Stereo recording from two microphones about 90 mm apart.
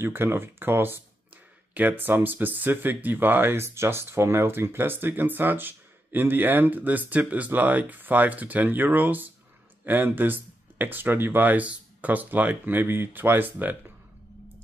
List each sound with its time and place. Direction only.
0.0 s speech: 25° right (ahead or behind)